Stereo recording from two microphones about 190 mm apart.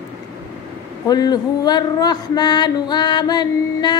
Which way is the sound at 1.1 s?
20° left (ahead or behind).